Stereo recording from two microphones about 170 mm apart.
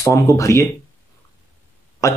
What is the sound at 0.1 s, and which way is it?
Speech, 20° left (ahead or behind).